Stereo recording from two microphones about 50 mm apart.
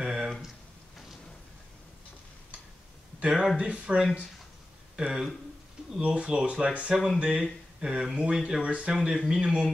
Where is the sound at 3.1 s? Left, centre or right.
Right.